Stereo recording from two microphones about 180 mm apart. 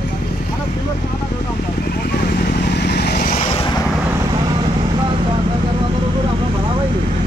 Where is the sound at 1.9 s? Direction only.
60° left (ahead or behind).